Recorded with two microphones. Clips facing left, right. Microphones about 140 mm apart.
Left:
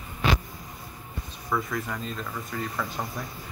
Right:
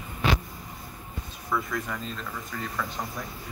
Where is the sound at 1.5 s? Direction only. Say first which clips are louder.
Left 1 dB; centre (ahead or behind).